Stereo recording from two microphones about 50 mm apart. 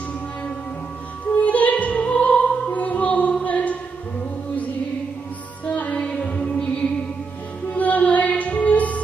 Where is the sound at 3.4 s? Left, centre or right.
Left.